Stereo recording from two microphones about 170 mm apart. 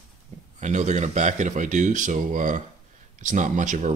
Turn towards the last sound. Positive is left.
turn(degrees=-50)  # may be behind; listen again after turning